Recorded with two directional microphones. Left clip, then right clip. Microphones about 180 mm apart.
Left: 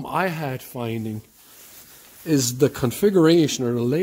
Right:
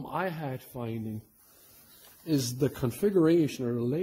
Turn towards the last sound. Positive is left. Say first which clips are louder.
# left 9 dB
turn(degrees=40)  # may be behind; listen again after turning